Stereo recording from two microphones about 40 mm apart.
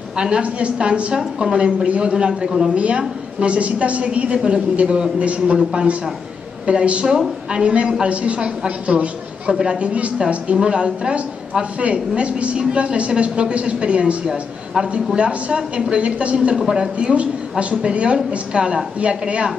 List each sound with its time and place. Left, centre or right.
0.4 s a woman's voice: right
2.7 s a woman's voice: right
5.6 s a man's voice: centre
6.6 s a woman's voice: right
9.5 s a woman's voice: right
9.8 s a woman's voice: right
14.7 s a man's voice: centre
15.1 s a woman's voice: right
16.7 s a woman's voice: right
17.1 s a woman's voice: right